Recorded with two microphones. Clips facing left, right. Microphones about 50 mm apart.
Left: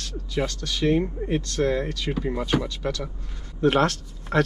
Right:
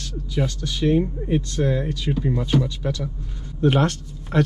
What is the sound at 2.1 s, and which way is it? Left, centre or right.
Speech, left.